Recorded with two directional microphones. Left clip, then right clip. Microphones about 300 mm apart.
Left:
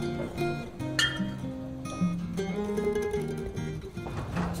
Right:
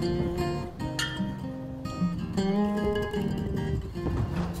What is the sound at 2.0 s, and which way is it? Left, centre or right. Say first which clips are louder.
Music: even; right.